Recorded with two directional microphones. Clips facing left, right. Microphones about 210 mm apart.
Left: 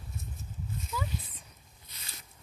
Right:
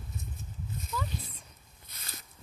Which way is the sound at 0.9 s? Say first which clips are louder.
Even; 5° left (ahead or behind).